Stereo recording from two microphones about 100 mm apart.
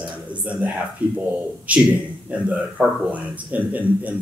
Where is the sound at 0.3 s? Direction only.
15° right (ahead or behind).